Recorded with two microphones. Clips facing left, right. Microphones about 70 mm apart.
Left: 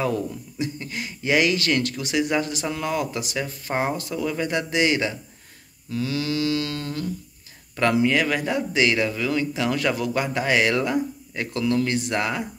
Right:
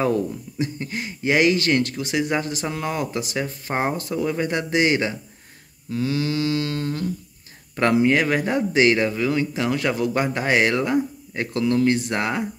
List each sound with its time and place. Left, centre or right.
0.0 s speech: right
9.1 s speech: right